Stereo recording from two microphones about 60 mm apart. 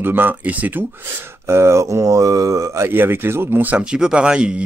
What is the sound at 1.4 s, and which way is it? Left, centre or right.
Speech, right.